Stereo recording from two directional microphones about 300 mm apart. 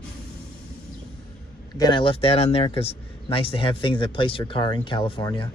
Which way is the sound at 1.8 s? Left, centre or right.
Centre.